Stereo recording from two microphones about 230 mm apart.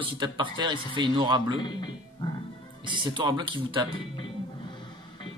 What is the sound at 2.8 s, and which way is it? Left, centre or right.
Speech, centre.